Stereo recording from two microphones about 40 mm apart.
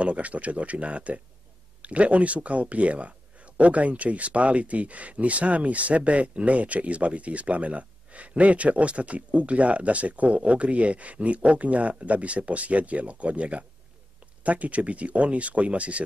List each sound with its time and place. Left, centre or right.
0.0 s speech: right